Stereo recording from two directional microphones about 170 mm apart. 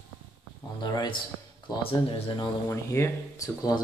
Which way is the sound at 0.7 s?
25° left (ahead or behind).